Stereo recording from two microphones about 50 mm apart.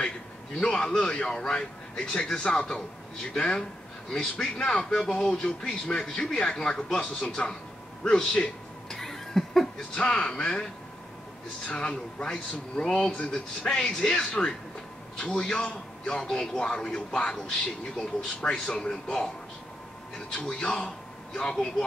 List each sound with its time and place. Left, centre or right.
0.7 s speech: centre
8.0 s a sound: centre
9.9 s speech: centre
12.3 s speech: centre
20.3 s a man's voice: left